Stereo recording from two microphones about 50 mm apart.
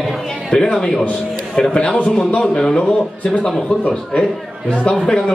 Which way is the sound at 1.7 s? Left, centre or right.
Left.